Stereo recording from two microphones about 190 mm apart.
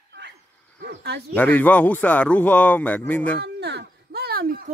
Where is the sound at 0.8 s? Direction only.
60° right (ahead or behind).